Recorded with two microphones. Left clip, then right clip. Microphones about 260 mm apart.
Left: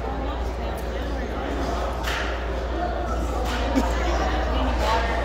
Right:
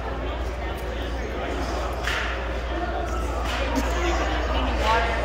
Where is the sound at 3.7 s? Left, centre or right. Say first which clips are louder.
Left 2 dB; left.